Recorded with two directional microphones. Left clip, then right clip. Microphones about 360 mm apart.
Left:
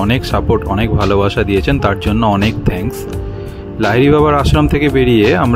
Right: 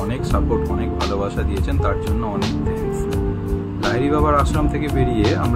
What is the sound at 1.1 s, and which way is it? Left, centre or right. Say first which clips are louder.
Speech: left 10 dB; left.